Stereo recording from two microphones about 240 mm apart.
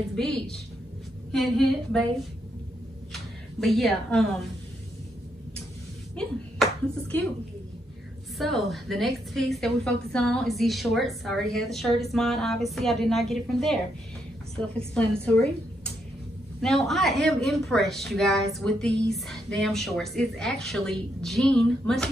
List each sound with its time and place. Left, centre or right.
0.1 s a woman's voice: centre
3.6 s a woman's voice: centre
6.1 s speech: centre
8.4 s a woman's voice: centre
16.6 s a woman's voice: centre